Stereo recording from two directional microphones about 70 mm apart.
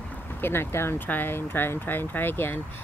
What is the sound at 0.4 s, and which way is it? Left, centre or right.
Speech, left.